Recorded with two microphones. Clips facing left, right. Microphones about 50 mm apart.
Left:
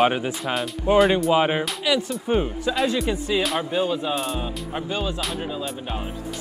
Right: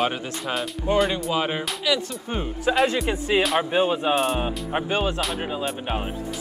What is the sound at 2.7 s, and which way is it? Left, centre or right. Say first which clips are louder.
Music: right 6 dB; right.